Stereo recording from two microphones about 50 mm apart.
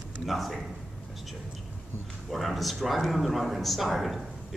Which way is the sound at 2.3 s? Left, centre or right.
Centre.